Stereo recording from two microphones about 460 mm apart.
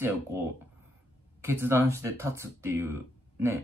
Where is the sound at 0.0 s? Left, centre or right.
Centre.